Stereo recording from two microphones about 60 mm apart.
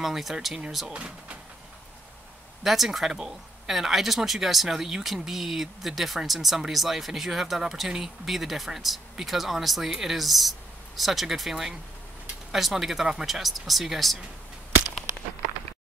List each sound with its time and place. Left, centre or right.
0.0 s speech: centre
0.8 s speech: centre
2.6 s speech: centre